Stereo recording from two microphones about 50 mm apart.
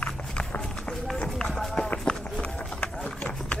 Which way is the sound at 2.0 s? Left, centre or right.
Centre.